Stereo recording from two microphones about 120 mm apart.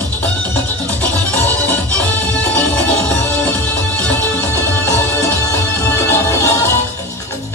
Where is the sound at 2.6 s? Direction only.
15° left (ahead or behind).